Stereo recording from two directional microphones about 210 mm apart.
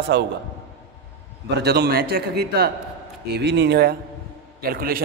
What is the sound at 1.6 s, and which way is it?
A man's voice, 50° right (ahead or behind).